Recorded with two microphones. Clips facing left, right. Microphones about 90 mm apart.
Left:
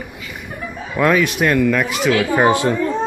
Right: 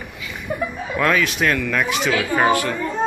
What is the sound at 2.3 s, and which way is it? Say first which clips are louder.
Speech: left 2 dB; 20° left (ahead or behind).